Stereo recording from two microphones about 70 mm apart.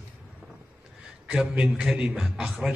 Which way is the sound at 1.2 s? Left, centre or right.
Centre.